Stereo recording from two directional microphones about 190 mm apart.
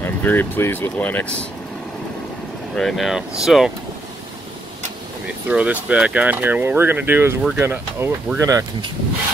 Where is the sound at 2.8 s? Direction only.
Centre (ahead or behind).